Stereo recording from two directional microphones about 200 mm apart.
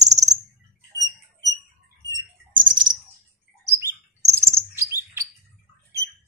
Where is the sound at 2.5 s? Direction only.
25° right (ahead or behind).